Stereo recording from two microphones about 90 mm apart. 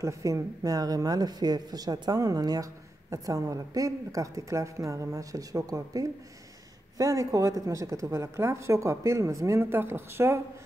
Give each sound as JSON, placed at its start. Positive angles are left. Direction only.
{"t": 0.0, "sound": "speech", "side_deg": -35}